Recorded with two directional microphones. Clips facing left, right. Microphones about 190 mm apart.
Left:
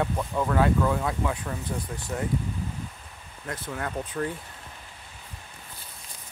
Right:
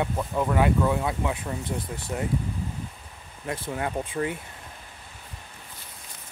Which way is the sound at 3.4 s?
20° right (ahead or behind).